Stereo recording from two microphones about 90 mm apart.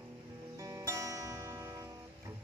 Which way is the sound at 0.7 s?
35° right (ahead or behind).